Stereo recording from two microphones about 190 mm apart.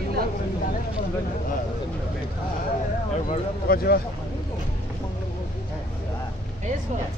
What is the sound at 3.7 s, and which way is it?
Speech, 50° left (ahead or behind).